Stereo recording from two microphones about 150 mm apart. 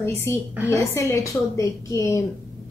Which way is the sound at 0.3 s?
20° left (ahead or behind).